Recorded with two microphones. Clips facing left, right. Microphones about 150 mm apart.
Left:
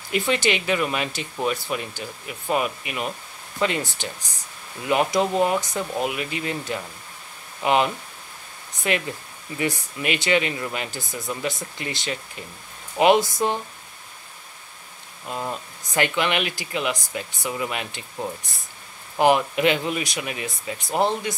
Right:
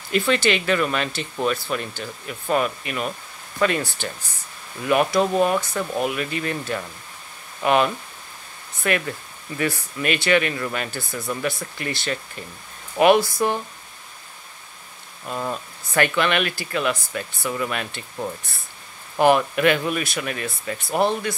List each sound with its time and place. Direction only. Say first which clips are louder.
0.1 s speech: right 2 dB; 15° left (ahead or behind)
15.2 s speech: right 2 dB; 20° left (ahead or behind)